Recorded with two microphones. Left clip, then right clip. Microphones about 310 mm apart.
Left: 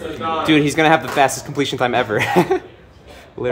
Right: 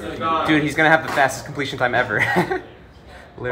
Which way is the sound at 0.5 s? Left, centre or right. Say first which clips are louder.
Left 3 dB; left.